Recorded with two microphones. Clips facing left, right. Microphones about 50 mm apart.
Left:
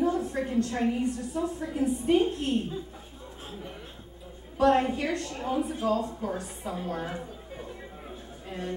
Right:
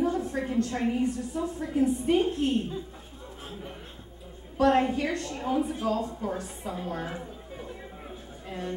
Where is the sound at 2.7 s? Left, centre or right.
Centre.